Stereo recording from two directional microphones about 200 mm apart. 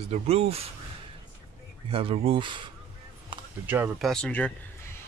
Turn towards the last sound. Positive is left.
turn(degrees=5)  # may be behind; listen again after turning